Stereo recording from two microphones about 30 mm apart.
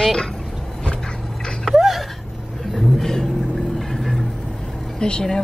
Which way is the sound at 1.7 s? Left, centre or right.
Centre.